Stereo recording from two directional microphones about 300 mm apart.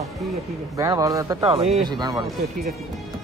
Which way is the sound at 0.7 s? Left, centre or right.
Centre.